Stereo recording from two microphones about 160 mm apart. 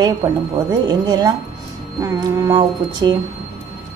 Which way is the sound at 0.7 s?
25° right (ahead or behind).